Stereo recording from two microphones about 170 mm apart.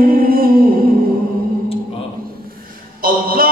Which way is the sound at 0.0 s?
55° right (ahead or behind).